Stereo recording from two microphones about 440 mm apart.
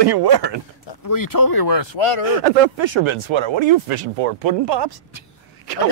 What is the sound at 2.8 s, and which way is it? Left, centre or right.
Speech, right.